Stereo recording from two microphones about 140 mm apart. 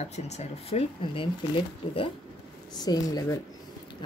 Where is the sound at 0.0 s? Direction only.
55° left (ahead or behind).